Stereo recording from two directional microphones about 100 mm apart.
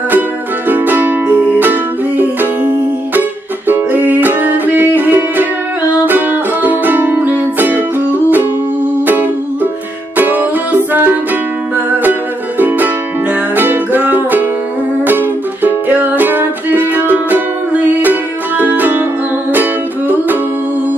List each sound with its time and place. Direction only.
0.7 s music: 20° right (ahead or behind)
9.0 s music: 20° right (ahead or behind)